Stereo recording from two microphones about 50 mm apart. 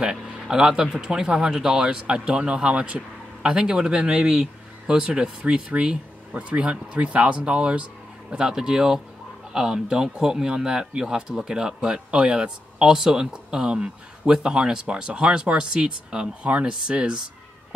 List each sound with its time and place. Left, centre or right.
0.0 s speech: centre